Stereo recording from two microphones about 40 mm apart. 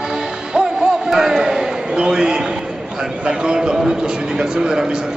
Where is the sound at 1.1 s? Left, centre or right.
Centre.